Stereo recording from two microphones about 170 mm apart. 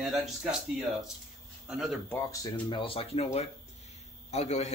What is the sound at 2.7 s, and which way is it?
A man's voice, 30° left (ahead or behind).